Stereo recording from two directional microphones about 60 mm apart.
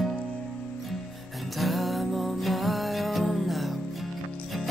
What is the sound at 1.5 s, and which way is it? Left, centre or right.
Music, centre.